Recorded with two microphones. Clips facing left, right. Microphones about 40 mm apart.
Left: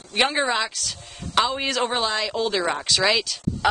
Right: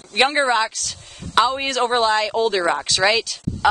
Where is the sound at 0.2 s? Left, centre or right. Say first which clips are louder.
Right 4 dB; centre.